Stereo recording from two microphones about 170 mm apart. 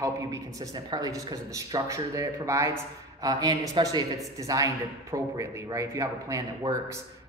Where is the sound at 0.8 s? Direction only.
25° right (ahead or behind).